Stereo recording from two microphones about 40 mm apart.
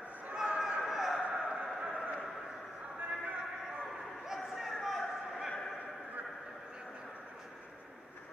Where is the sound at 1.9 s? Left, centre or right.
Right.